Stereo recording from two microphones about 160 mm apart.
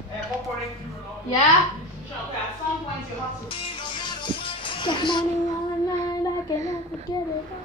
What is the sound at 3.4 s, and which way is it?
Music, 30° left (ahead or behind).